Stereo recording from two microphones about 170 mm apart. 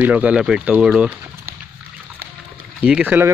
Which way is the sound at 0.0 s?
10° right (ahead or behind).